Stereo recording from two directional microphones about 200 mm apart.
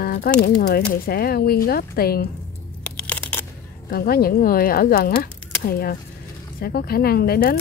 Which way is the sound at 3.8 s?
50° left (ahead or behind).